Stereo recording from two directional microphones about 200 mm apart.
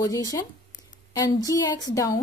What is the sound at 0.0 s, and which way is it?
Speech, 20° left (ahead or behind).